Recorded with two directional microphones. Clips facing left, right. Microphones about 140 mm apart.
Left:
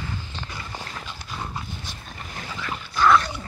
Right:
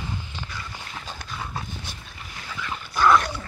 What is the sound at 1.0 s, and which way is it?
Dog, 45° right (ahead or behind).